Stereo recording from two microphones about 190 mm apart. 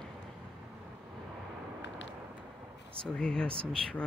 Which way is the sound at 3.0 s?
5° left (ahead or behind).